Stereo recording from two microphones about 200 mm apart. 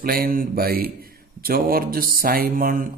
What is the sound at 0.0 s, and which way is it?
A man's voice, 45° right (ahead or behind).